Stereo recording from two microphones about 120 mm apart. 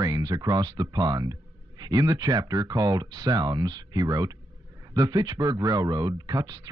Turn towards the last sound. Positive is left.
turn(degrees=-35)  # may be behind; listen again after turning